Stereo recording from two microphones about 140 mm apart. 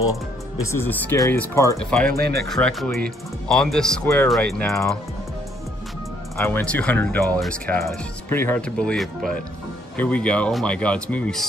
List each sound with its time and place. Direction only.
0.1 s speech: 20° left (ahead or behind)
1.8 s speech: 5° left (ahead or behind)
2.0 s speech: 90° right
2.5 s speech: centre (ahead or behind)
6.3 s speech: 15° left (ahead or behind)